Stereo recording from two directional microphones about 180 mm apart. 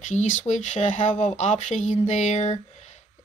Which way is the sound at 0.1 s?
45° left (ahead or behind).